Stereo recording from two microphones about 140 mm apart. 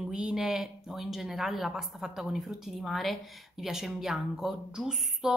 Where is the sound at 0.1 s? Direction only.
5° right (ahead or behind).